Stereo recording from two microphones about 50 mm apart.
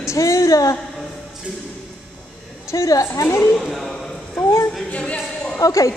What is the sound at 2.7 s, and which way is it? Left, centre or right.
Speech, left.